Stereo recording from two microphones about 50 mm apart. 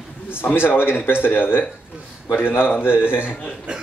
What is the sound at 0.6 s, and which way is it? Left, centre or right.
A man's voice, left.